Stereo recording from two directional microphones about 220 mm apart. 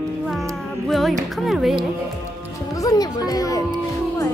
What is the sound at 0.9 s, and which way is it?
Music, centre (ahead or behind).